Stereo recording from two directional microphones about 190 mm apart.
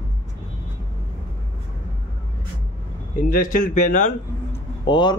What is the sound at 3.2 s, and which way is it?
Speech, 45° left (ahead or behind).